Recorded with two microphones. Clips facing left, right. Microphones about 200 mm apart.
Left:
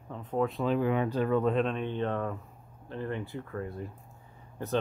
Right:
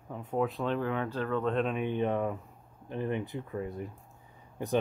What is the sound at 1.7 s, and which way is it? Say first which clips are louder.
Speech: right 1 dB; 10° right (ahead or behind).